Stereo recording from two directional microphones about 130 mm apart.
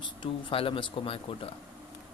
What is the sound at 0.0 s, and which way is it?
Speech, 40° left (ahead or behind).